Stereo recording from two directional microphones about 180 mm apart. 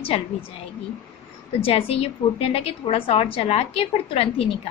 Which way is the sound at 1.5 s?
30° left (ahead or behind).